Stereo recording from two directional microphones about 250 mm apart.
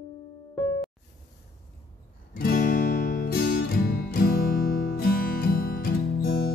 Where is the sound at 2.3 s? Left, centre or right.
Left.